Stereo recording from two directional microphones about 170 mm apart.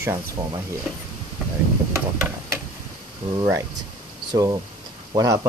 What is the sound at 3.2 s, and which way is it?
Speech, 20° right (ahead or behind).